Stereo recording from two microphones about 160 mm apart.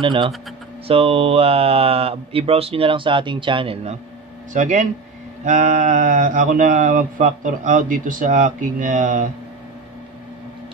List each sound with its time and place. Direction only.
0.0 s speech: 35° right (ahead or behind)
4.6 s speech: 50° right (ahead or behind)